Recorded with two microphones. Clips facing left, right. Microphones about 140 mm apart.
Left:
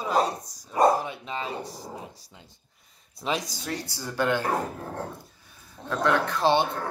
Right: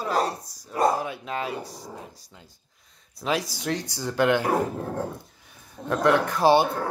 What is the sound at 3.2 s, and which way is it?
Speech, 5° right (ahead or behind).